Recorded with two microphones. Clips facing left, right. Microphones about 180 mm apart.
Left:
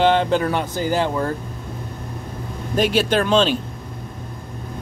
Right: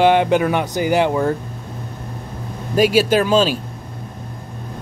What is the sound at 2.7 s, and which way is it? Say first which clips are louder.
Speech: right 4 dB; 5° right (ahead or behind).